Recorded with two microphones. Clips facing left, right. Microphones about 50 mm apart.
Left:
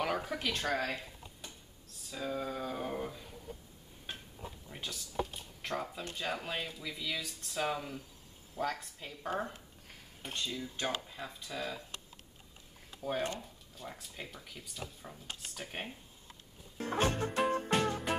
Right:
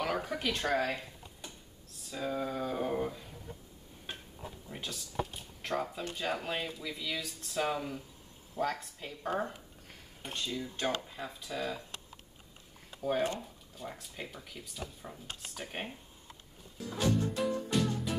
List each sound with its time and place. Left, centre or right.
0.0 s speech: centre
4.1 s a sound: centre
4.6 s speech: centre
12.9 s speech: centre
16.7 s music: left